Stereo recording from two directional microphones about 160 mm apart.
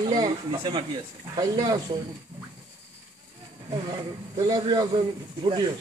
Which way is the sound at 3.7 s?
25° right (ahead or behind).